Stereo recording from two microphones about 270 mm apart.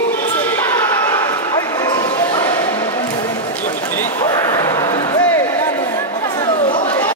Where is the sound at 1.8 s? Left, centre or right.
Centre.